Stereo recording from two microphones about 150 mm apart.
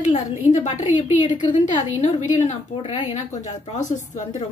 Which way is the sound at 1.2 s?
30° left (ahead or behind).